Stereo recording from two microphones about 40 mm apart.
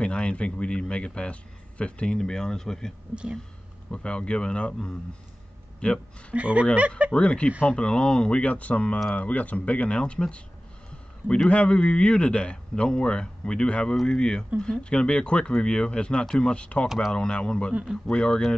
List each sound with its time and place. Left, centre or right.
0.0 s a man's voice: left
2.1 s speech: centre
3.9 s a man's voice: left
5.8 s speech: left
6.3 s speech: right
7.2 s a man's voice: left
9.9 s a man's voice: left
14.0 s a man's voice: centre